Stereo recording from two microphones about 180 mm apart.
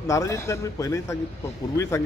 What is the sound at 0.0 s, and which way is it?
Speech, 15° left (ahead or behind).